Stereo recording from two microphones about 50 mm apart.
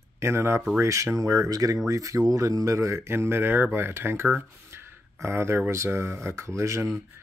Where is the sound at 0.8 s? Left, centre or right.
Right.